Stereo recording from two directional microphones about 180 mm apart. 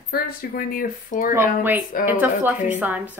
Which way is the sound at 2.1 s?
10° right (ahead or behind).